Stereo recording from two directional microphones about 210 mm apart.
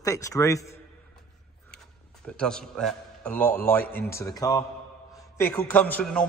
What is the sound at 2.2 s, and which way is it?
A man's voice, 5° left (ahead or behind).